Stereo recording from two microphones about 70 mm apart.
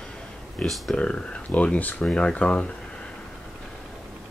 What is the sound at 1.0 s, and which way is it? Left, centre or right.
Speech, centre.